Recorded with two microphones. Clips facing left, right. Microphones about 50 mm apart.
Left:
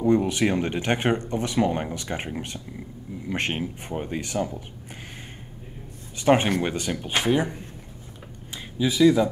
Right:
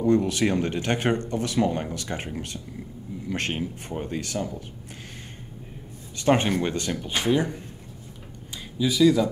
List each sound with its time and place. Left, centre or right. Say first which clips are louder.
0.0 s speech: left 1 dB; centre
6.1 s speech: left 2 dB; centre
7.1 s speech: left 1 dB; left
8.7 s speech: left 1 dB; left